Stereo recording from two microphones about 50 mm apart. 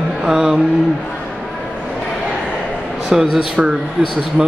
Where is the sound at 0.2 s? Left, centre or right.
Centre.